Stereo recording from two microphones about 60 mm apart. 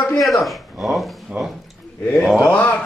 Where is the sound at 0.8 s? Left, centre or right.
Centre.